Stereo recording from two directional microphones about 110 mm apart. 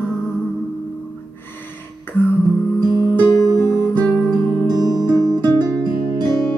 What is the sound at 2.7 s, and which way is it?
Music, 40° right (ahead or behind).